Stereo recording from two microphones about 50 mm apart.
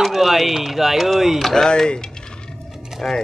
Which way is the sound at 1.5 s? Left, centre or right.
Centre.